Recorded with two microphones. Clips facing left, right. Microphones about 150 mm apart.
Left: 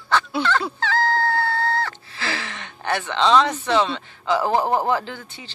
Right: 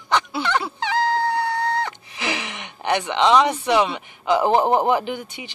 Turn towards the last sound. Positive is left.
turn(degrees=-15)  # may be behind; listen again after turning